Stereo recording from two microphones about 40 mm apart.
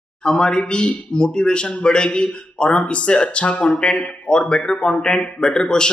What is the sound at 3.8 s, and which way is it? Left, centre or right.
Speech, left.